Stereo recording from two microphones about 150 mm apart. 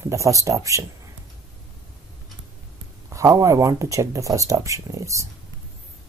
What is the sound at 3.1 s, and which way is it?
Speech, 20° right (ahead or behind).